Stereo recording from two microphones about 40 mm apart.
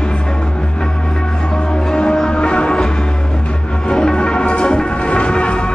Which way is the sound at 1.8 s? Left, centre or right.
Centre.